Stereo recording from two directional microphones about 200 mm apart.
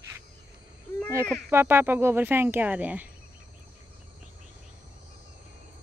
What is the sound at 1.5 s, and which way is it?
Speech, 10° right (ahead or behind).